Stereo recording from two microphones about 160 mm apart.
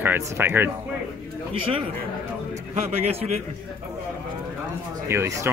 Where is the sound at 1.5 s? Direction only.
35° right (ahead or behind).